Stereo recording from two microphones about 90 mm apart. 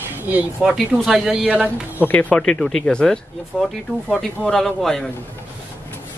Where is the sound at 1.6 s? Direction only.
20° left (ahead or behind); by 5.1 s 5° left (ahead or behind).